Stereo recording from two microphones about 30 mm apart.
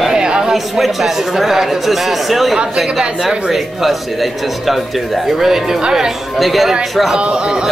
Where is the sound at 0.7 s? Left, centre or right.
Centre.